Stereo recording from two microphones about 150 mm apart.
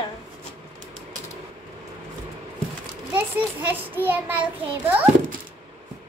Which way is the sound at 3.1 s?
15° right (ahead or behind).